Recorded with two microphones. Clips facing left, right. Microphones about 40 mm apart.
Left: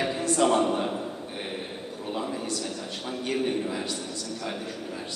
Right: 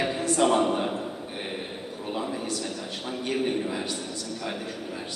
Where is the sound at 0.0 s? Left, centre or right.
Centre.